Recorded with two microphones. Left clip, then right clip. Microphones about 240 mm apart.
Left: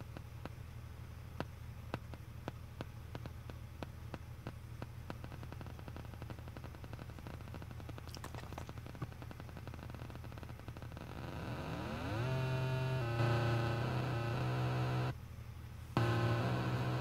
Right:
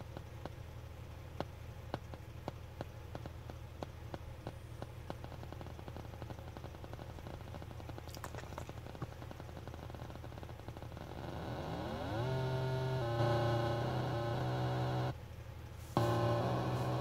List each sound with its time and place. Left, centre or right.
3.8 s a sound: left
11.2 s vehicle: left
15.9 s music: left